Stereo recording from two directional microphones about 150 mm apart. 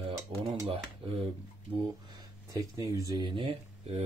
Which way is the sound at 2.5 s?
20° right (ahead or behind).